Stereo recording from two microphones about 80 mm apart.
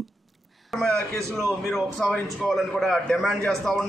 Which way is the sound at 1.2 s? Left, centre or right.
Right.